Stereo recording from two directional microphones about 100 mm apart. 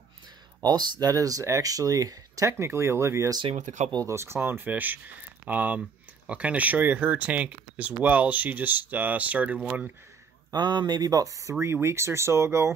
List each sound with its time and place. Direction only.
0.6 s speech: 45° right (ahead or behind); by 9.6 s 15° right (ahead or behind)
10.5 s speech: 45° right (ahead or behind); by 12.7 s 30° right (ahead or behind)